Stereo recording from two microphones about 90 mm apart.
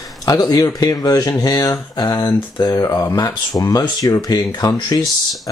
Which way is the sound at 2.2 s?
50° left (ahead or behind).